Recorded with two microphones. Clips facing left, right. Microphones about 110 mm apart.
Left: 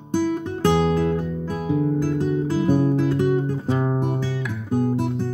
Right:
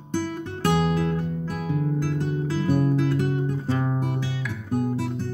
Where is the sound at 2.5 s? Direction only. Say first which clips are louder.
Left 2 dB; 25° left (ahead or behind).